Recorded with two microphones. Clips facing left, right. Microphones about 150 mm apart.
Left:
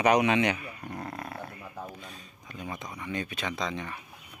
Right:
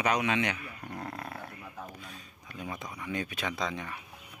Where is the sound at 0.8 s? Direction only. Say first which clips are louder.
Even; 5° left (ahead or behind).